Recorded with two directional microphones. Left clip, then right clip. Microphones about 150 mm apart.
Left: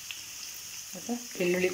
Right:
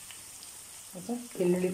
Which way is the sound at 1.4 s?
15° right (ahead or behind).